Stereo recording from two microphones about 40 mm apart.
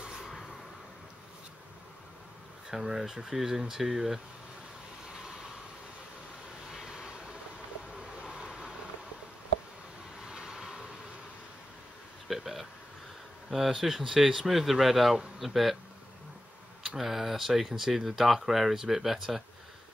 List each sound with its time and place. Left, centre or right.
2.7 s speech: centre
6.7 s vehicle: centre
10.2 s vehicle: centre
12.3 s a sound: centre
13.5 s speech: centre
16.8 s speech: centre